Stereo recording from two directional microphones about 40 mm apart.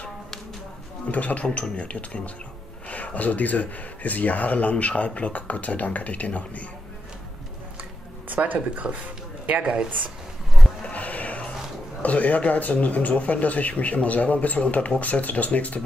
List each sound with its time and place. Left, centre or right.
1.1 s speech: left
8.3 s music: right
8.5 s speech: right
9.6 s speech: centre
10.9 s a sound: left
12.0 s speech: left